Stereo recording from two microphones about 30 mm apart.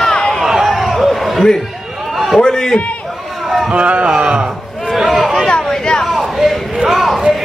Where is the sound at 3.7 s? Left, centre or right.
Right.